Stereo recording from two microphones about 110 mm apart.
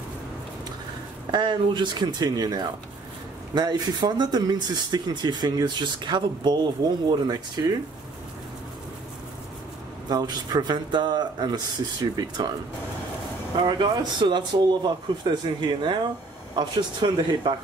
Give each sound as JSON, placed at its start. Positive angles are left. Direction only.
{"t": 1.3, "sound": "speech", "side_deg": -45}
{"t": 10.0, "sound": "speech", "side_deg": -40}
{"t": 13.6, "sound": "speech", "side_deg": -45}